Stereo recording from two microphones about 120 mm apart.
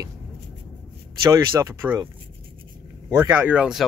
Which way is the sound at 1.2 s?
25° right (ahead or behind).